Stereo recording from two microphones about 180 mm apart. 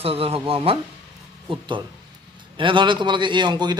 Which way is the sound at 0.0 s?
30° right (ahead or behind).